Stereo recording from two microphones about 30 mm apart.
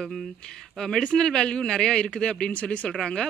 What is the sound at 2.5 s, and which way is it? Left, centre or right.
Speech, left.